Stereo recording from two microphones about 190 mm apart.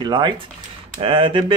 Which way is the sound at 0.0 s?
25° right (ahead or behind).